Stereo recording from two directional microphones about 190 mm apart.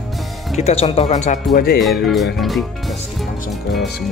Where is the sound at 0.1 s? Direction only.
Centre (ahead or behind).